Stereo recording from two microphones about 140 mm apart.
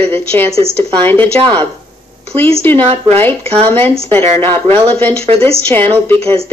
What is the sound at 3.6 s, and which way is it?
A woman's voice, 15° left (ahead or behind).